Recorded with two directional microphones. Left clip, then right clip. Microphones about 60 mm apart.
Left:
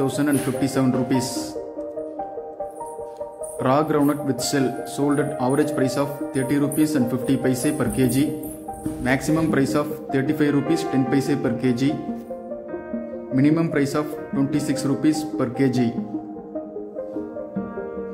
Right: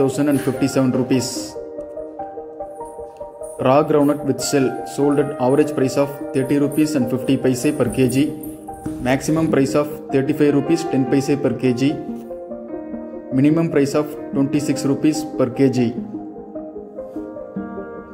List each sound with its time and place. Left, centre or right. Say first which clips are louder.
0.0 s speech: right 4 dB; right
3.5 s a man's voice: right 5 dB; right
13.4 s speech: right 4 dB; right